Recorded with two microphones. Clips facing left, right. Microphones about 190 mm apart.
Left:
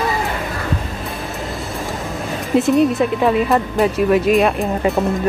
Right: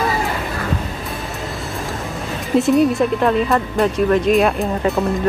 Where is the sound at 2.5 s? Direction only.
Centre (ahead or behind).